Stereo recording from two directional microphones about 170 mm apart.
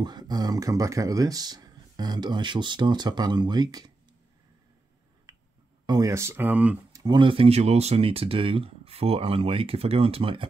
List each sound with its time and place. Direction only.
0.0 s speech: 25° right (ahead or behind)
5.9 s speech: 20° right (ahead or behind)
6.9 s speech: 25° right (ahead or behind)